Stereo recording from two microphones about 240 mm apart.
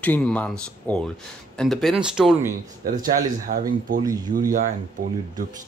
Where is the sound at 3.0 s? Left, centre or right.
Right.